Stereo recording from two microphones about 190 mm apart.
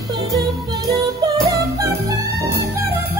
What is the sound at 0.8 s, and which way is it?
Music, 20° right (ahead or behind).